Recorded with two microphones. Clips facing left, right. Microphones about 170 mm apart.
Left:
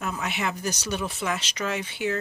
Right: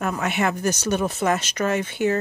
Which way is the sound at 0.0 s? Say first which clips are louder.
Right 6 dB; 50° right (ahead or behind).